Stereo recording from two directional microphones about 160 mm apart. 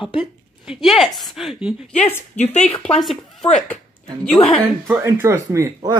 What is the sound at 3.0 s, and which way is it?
Speech, centre (ahead or behind).